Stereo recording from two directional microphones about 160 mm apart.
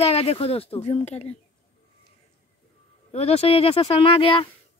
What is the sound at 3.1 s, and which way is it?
Speech, 40° left (ahead or behind).